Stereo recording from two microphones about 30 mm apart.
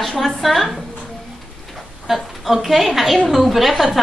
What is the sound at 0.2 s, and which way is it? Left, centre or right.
Speech, centre.